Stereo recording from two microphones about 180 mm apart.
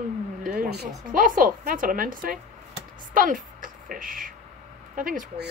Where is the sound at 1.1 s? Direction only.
50° right (ahead or behind).